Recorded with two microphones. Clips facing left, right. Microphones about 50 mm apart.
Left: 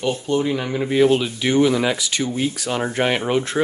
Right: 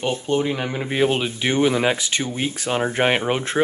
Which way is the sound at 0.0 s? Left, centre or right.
Right.